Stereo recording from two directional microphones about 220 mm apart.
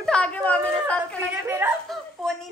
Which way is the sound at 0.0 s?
5° left (ahead or behind).